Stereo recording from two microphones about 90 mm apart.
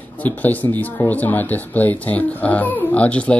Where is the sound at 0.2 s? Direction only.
20° left (ahead or behind).